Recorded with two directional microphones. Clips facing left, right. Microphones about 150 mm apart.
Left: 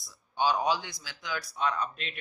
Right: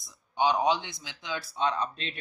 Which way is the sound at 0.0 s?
20° right (ahead or behind).